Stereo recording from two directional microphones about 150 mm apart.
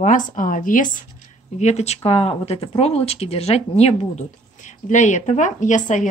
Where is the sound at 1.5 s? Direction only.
50° left (ahead or behind).